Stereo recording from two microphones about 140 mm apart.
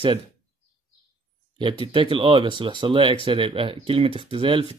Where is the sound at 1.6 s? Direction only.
35° right (ahead or behind).